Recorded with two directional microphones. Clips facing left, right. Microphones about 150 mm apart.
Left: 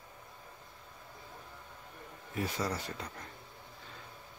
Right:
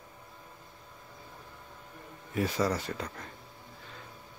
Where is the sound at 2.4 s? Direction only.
90° right.